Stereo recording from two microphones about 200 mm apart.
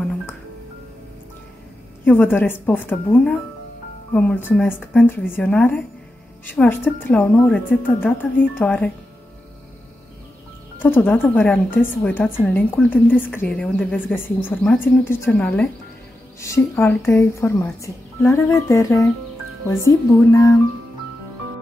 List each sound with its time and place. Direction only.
2.0 s a woman's voice: 10° left (ahead or behind)
10.8 s a woman's voice: 10° left (ahead or behind)